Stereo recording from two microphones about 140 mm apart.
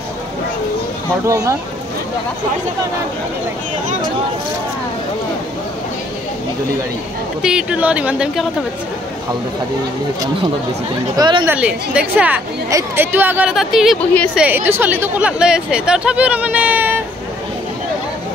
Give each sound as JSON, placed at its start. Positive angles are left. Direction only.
{"t": 1.2, "sound": "speech", "side_deg": -20}
{"t": 7.4, "sound": "speech", "side_deg": -10}
{"t": 11.1, "sound": "a woman's voice", "side_deg": -35}
{"t": 11.4, "sound": "speech", "side_deg": -10}
{"t": 12.6, "sound": "speech", "side_deg": -20}